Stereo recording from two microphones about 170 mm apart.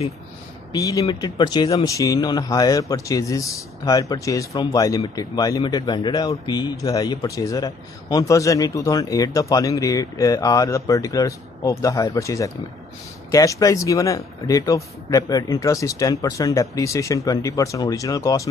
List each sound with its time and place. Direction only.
0.7 s speech: 20° left (ahead or behind)